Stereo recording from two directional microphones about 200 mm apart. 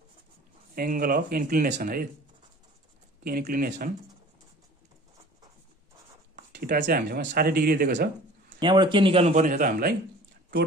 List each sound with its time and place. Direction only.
0.7 s speech: 45° right (ahead or behind)
3.3 s speech: 45° right (ahead or behind)
6.5 s speech: 45° right (ahead or behind)
8.5 s a man's voice: 25° right (ahead or behind); by 9.9 s 45° right (ahead or behind)